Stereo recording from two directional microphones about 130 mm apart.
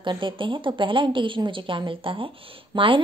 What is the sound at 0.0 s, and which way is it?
A woman's voice, 40° right (ahead or behind).